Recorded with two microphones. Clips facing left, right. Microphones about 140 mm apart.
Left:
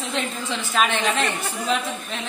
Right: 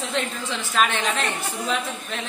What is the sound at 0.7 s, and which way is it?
Speech, centre (ahead or behind).